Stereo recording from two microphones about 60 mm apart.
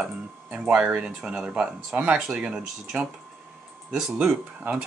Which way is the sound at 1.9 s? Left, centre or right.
Right.